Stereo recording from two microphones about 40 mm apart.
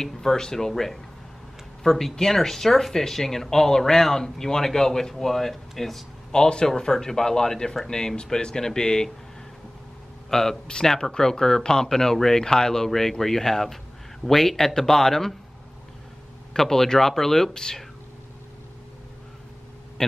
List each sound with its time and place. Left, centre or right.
0.1 s speech: centre
6.3 s speech: centre
10.3 s speech: centre
16.5 s speech: centre
20.0 s speech: centre